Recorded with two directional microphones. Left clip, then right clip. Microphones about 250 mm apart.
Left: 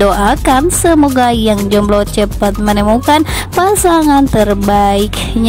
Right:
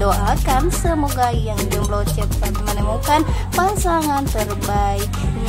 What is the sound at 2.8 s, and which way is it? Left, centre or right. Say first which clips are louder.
Music: left 7 dB; left.